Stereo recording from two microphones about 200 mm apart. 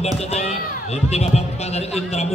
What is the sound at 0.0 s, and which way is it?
Speech, 30° left (ahead or behind).